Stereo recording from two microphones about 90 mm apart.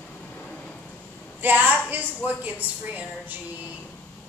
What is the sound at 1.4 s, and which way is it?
A woman's voice, 20° right (ahead or behind).